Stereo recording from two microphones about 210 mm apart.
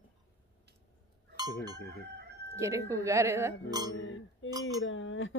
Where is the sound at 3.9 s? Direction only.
65° left (ahead or behind).